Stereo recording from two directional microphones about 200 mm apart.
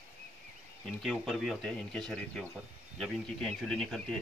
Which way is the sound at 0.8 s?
Centre (ahead or behind).